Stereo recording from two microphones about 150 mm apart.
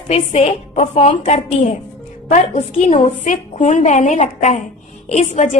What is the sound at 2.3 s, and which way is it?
A woman's voice, 60° left (ahead or behind).